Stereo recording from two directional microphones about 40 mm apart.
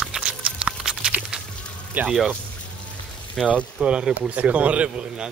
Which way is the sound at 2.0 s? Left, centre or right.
Right.